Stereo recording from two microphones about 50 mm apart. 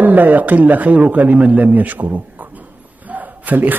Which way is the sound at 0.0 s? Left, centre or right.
Right.